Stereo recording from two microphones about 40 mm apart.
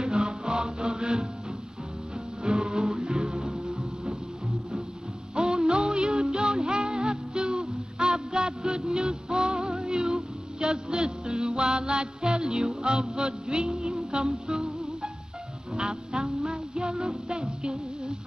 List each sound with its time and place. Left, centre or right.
0.0 s music: centre
2.4 s music: right
3.3 s music: centre
5.3 s music: centre
13.7 s music: centre
16.9 s music: centre
17.3 s music: centre